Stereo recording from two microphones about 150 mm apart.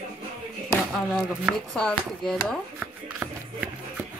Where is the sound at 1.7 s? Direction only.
5° left (ahead or behind).